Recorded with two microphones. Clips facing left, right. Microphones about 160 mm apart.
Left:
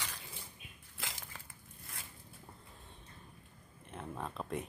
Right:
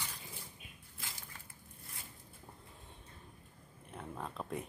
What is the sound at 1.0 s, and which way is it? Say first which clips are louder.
Crushing: left 4 dB; 90° left.